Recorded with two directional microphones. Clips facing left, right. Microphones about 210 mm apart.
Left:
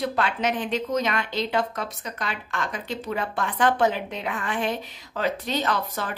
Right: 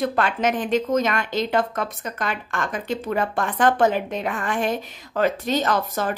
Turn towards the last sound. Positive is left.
turn(degrees=-45)  # may be behind; listen again after turning